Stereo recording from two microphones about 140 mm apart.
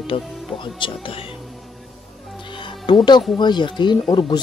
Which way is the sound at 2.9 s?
30° left (ahead or behind).